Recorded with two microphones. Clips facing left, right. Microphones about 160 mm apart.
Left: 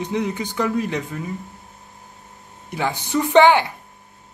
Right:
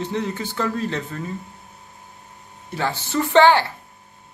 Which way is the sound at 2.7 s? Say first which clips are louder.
Left 1 dB; 15° left (ahead or behind).